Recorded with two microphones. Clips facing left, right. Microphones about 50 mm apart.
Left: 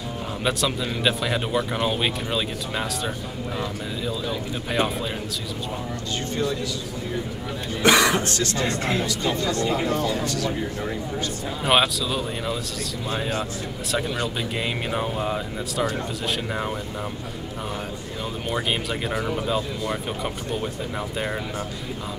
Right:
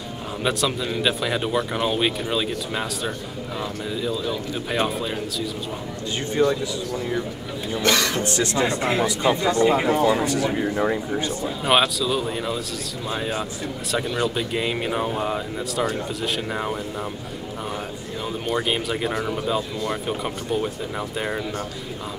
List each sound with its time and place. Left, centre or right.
0.4 s speech: centre
4.0 s speech: centre
6.4 s speech: right
7.8 s speech: centre
8.3 s speech: centre
11.4 s speech: centre
18.5 s speech: centre